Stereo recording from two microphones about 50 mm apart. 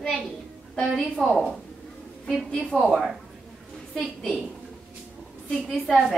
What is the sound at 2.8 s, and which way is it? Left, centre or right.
A woman's voice, centre.